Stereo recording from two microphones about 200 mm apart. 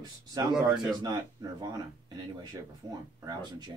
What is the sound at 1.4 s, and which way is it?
Speech, 20° right (ahead or behind).